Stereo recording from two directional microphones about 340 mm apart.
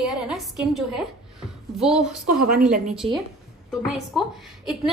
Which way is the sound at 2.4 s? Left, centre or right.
Right.